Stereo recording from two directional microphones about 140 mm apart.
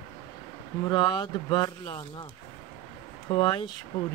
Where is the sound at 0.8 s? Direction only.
30° left (ahead or behind).